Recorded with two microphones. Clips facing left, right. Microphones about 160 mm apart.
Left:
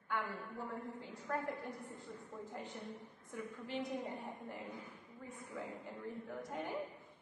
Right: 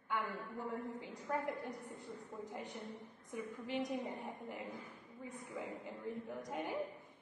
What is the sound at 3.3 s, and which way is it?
A woman's voice, 15° right (ahead or behind).